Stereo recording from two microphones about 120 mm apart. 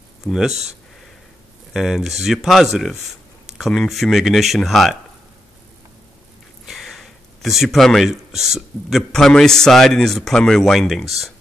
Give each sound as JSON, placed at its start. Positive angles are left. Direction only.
{"t": 0.5, "sound": "speech", "side_deg": -65}
{"t": 1.7, "sound": "speech", "side_deg": 0}
{"t": 6.6, "sound": "speech", "side_deg": 0}